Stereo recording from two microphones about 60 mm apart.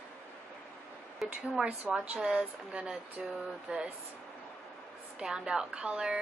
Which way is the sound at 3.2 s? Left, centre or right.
Centre.